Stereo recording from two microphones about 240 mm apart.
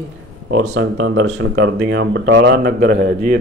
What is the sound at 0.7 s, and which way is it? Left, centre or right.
Speech, right.